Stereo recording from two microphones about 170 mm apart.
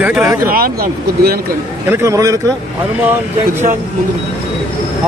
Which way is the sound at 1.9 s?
15° right (ahead or behind).